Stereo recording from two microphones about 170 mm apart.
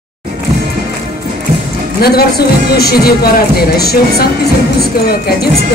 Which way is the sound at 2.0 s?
65° left (ahead or behind).